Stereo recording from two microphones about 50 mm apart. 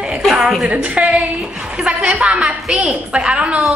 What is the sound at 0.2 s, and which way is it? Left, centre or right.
Speech, centre.